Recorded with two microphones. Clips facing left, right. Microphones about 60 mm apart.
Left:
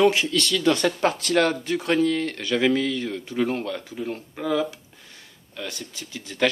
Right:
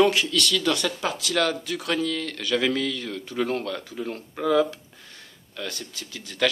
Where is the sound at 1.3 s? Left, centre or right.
Left; by 4.7 s centre.